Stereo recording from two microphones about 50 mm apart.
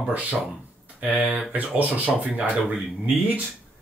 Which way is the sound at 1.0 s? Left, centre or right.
Right.